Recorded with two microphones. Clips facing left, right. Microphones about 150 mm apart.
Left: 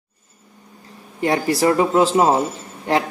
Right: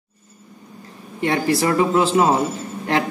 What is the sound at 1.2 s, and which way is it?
A man's voice, 35° left (ahead or behind).